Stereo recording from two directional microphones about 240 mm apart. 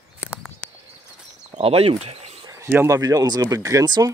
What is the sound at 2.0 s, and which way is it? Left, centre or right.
Cricket, right.